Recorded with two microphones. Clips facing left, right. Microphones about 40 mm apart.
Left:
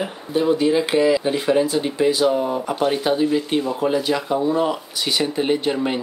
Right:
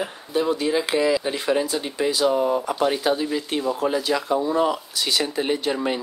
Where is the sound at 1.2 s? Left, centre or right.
Left.